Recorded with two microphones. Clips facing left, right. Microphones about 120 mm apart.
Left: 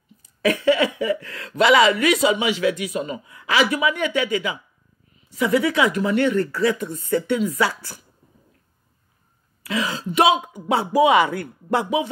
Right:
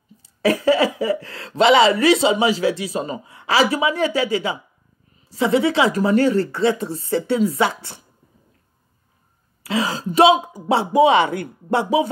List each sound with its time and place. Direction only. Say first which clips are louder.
0.2 s speech: right 2 dB; 35° right (ahead or behind)
9.6 s speech: right 3 dB; 30° right (ahead or behind)